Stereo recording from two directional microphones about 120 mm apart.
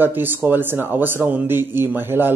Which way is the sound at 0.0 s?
15° right (ahead or behind).